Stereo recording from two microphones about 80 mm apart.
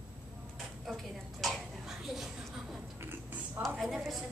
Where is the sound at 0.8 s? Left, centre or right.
Centre.